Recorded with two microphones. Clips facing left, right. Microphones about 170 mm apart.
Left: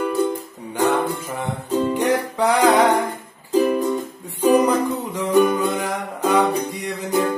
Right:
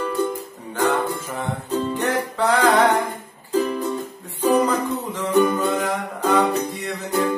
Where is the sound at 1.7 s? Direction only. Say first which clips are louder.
Left 4 dB; 15° left (ahead or behind).